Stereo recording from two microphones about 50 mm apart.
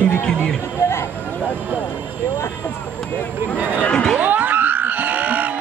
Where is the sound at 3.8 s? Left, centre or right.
Centre.